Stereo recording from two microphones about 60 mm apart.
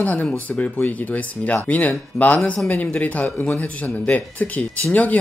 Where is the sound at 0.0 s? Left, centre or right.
Left.